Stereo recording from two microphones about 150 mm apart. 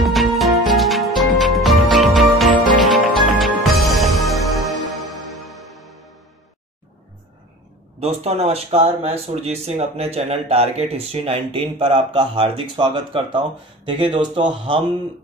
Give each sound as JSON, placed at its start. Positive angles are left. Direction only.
{"t": 0.0, "sound": "music", "side_deg": 0}
{"t": 8.0, "sound": "speech", "side_deg": -45}